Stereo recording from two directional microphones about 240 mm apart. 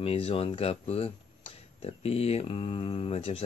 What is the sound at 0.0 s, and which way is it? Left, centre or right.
Speech, left.